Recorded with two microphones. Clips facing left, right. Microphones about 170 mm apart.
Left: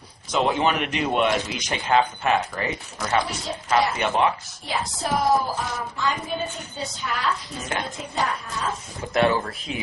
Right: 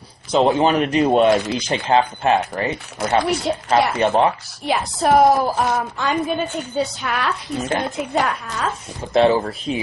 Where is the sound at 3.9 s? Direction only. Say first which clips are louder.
Right 5 dB; 35° right (ahead or behind).